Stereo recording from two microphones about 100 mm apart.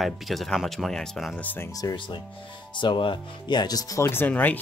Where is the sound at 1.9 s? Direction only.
55° left (ahead or behind); by 4.1 s 35° left (ahead or behind).